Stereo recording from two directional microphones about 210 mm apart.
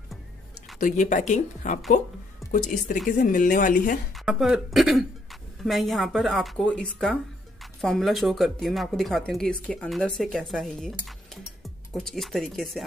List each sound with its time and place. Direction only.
0.7 s speech: 40° left (ahead or behind)
2.4 s music: centre (ahead or behind)
3.1 s speech: 40° left (ahead or behind)
4.1 s speech: centre (ahead or behind)